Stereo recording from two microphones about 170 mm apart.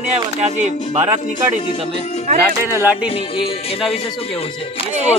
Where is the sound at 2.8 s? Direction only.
10° right (ahead or behind).